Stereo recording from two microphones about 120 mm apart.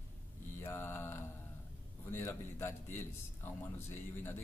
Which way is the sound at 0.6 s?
20° left (ahead or behind).